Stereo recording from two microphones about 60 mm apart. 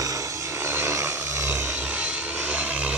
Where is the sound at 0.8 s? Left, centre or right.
Right.